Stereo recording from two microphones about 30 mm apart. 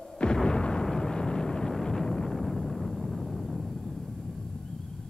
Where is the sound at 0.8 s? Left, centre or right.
Left.